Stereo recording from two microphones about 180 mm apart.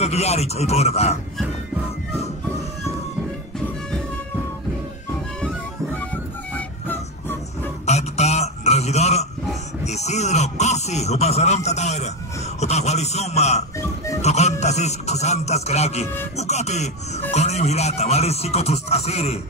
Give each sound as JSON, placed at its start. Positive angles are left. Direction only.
{"t": 0.0, "sound": "speech", "side_deg": 35}
{"t": 6.5, "sound": "music", "side_deg": 10}
{"t": 7.8, "sound": "a sound", "side_deg": 40}
{"t": 9.8, "sound": "speech", "side_deg": 40}
{"t": 13.7, "sound": "music", "side_deg": 15}
{"t": 14.2, "sound": "music", "side_deg": 40}
{"t": 14.6, "sound": "speech", "side_deg": 40}